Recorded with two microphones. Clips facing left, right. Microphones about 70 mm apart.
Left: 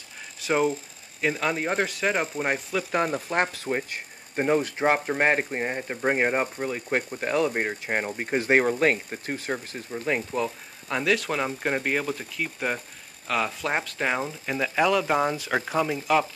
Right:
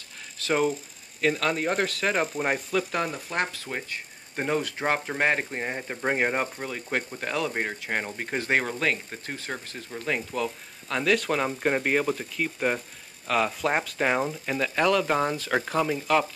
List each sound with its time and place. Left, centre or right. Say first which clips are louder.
0.5 s speech: left 1 dB; centre
3.3 s speech: left 4 dB; centre
11.1 s speech: right 1 dB; centre